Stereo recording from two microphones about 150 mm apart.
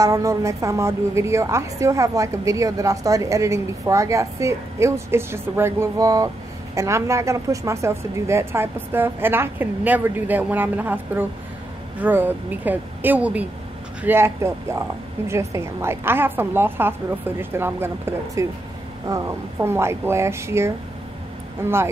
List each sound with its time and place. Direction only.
0.0 s a woman's voice: 20° right (ahead or behind)